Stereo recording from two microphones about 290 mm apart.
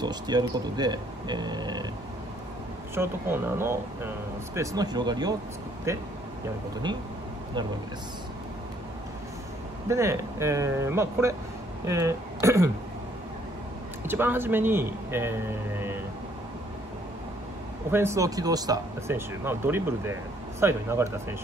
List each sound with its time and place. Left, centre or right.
0.0 s speech: centre
2.9 s speech: centre
9.8 s speech: centre
14.0 s speech: centre
17.9 s speech: centre